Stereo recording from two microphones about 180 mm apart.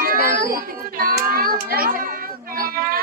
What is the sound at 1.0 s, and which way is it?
Child singing, 55° right (ahead or behind).